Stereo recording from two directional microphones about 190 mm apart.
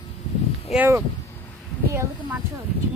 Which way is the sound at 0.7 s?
10° right (ahead or behind).